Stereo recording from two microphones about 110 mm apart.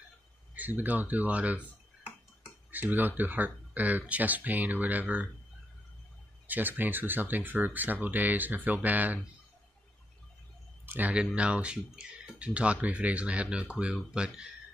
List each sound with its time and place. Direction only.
0.6 s speech: 15° right (ahead or behind)
2.7 s speech: 15° right (ahead or behind)
6.4 s speech: 15° right (ahead or behind)
10.9 s speech: 15° right (ahead or behind)